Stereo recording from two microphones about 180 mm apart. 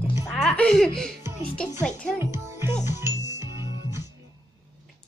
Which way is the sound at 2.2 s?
15° right (ahead or behind).